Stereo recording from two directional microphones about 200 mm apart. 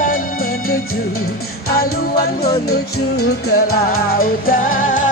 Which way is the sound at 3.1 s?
90° left.